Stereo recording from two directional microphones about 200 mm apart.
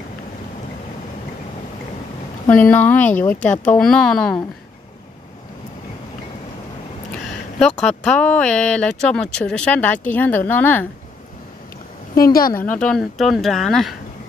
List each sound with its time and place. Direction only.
2.4 s a woman's voice: 10° left (ahead or behind)
7.2 s a sound: 5° left (ahead or behind)
7.8 s a woman's voice: 5° left (ahead or behind)
12.2 s a woman's voice: 50° left (ahead or behind)
12.5 s speech: 5° left (ahead or behind)